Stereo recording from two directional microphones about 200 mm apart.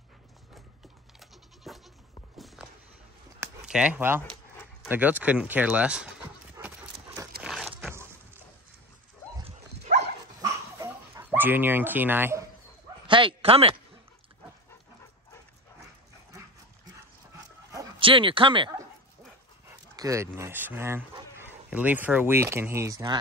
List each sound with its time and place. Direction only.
1.2 s goat: centre (ahead or behind)
2.3 s a sound: centre (ahead or behind)
4.8 s speech: 10° right (ahead or behind)
7.4 s a sound: centre (ahead or behind)
9.9 s dog: 50° right (ahead or behind)
10.4 s dog: 15° right (ahead or behind)
13.0 s speech: 25° right (ahead or behind)
16.9 s dog: 15° right (ahead or behind)
20.0 s speech: 15° right (ahead or behind)